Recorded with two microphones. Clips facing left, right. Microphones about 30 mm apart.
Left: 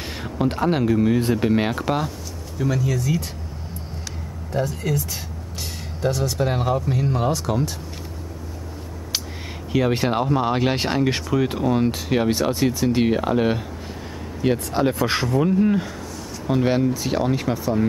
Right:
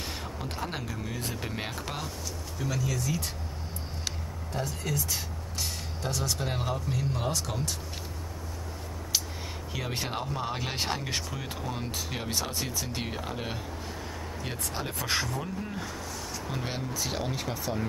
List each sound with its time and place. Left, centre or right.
0.0 s speech: left
4.5 s speech: centre
6.0 s speech: centre
9.7 s speech: left
16.4 s speech: left
16.9 s speech: centre